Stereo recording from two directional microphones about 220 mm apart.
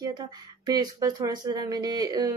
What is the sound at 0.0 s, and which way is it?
Speech, 20° right (ahead or behind).